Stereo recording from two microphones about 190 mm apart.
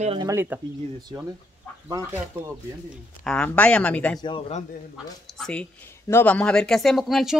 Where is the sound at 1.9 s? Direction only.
10° right (ahead or behind).